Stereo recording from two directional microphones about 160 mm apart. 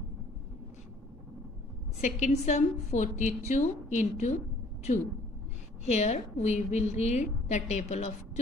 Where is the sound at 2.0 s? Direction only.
50° left (ahead or behind).